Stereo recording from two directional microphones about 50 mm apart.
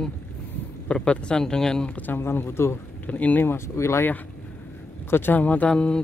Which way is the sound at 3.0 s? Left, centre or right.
Left.